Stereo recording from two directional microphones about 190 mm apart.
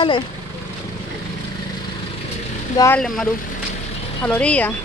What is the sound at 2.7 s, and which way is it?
Speech, 15° left (ahead or behind).